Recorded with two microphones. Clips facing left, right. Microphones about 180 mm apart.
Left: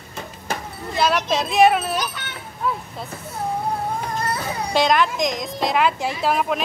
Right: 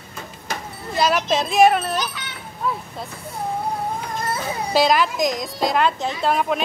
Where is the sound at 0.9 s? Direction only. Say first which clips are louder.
Right 1 dB; centre (ahead or behind).